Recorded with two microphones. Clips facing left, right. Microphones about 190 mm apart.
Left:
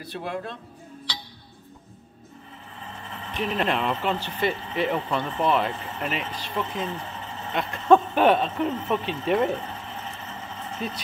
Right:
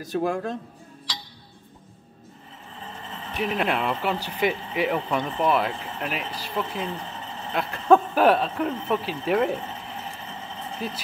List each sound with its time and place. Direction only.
0.0 s speech: 45° right (ahead or behind)
3.3 s speech: 10° right (ahead or behind)
10.8 s speech: 5° right (ahead or behind)